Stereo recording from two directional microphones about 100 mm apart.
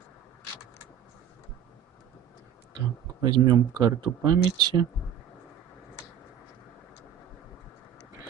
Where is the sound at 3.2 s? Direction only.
45° right (ahead or behind).